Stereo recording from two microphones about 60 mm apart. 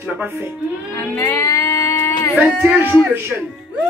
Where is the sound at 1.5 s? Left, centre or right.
Left.